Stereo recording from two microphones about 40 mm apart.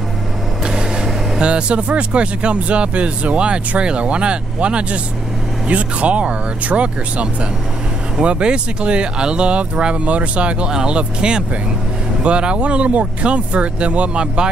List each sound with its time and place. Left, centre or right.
0.7 s speech: right
10.7 s speech: centre